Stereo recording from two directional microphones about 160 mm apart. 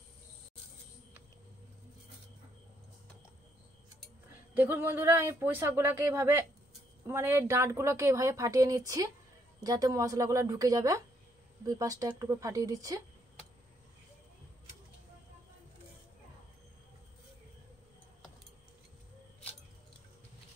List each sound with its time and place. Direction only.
4.6 s a woman's voice: 15° right (ahead or behind)